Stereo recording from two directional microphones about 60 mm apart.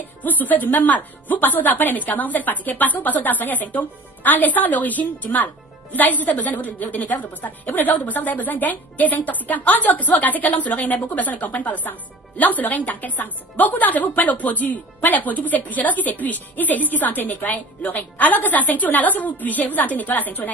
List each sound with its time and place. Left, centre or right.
0.0 s a woman's voice: left